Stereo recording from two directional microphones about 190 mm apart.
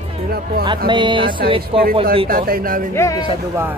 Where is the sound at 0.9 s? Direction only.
25° right (ahead or behind).